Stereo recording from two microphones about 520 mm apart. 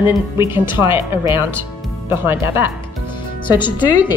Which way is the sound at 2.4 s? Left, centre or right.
Left.